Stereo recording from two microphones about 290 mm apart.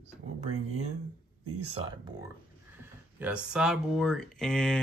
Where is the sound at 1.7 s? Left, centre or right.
Centre.